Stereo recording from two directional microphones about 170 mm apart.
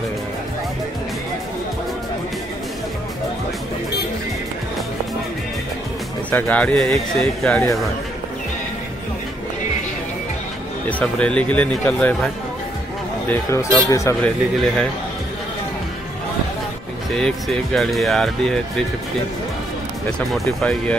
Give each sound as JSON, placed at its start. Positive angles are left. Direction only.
{"t": 6.3, "sound": "speech", "side_deg": 10}
{"t": 10.9, "sound": "speech", "side_deg": 5}
{"t": 13.3, "sound": "speech", "side_deg": 15}
{"t": 14.2, "sound": "speech", "side_deg": 5}
{"t": 17.1, "sound": "speech", "side_deg": 0}
{"t": 20.1, "sound": "speech", "side_deg": 5}